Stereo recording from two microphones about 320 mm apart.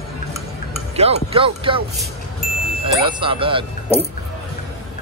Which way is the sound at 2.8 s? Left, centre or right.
Centre.